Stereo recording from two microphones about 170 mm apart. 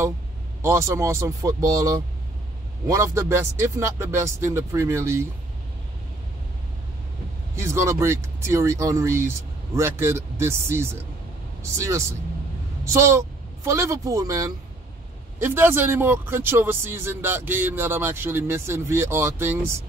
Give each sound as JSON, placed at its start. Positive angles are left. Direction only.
{"t": 0.6, "sound": "speech", "side_deg": -15}
{"t": 7.5, "sound": "speech", "side_deg": -15}
{"t": 12.8, "sound": "speech", "side_deg": -15}